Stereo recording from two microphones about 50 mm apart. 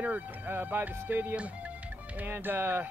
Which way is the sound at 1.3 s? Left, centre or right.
Right.